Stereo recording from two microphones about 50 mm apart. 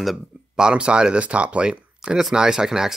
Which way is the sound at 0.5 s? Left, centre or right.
Centre.